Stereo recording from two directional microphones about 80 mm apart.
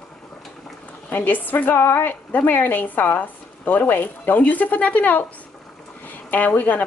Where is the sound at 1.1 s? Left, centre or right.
Left.